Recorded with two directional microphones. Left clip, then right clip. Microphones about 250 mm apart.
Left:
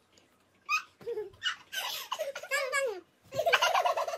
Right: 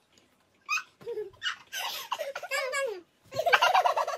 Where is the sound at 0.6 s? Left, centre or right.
Centre.